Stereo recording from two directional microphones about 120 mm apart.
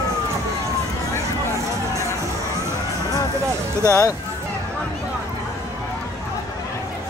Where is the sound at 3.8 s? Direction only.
30° left (ahead or behind).